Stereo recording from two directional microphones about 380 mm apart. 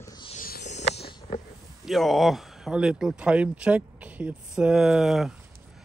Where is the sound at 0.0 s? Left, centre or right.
Centre.